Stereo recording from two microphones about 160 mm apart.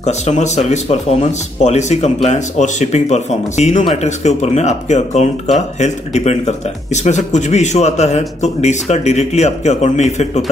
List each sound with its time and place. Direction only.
0.0 s speech: 45° left (ahead or behind)